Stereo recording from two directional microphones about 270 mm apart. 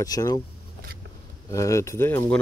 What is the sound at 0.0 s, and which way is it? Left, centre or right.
Speech, centre.